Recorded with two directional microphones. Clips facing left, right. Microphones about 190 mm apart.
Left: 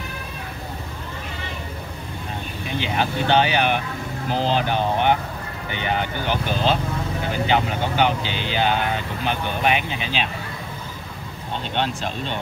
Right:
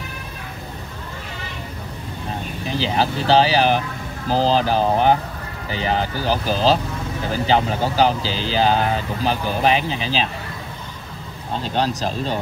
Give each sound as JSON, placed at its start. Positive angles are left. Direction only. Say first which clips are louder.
{"t": 2.7, "sound": "speech", "louder": "right 3 dB", "side_deg": -35}
{"t": 11.7, "sound": "speech", "louder": "right 4 dB", "side_deg": -35}